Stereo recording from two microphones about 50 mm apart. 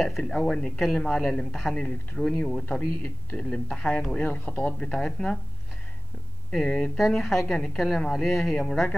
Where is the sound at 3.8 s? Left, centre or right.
Centre.